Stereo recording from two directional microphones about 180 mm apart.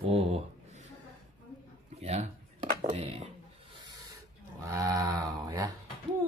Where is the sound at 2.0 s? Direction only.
40° right (ahead or behind).